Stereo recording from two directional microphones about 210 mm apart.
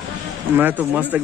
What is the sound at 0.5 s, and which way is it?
Speech, 10° right (ahead or behind).